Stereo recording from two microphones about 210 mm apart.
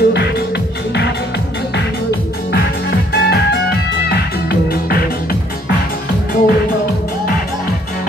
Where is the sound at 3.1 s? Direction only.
50° left (ahead or behind).